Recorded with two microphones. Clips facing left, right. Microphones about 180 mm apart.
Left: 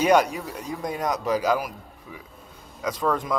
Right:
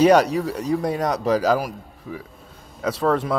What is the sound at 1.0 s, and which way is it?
Speech, 35° right (ahead or behind).